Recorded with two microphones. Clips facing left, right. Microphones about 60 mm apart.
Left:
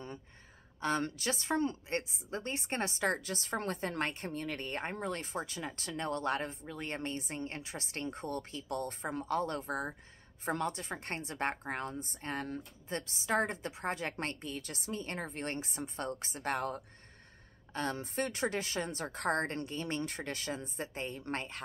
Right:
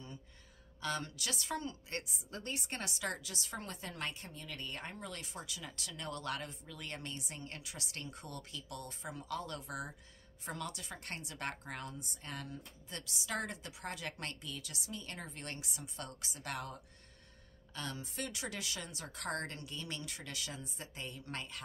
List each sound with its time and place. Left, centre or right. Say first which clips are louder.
0.7 s a woman's voice: left 6 dB; left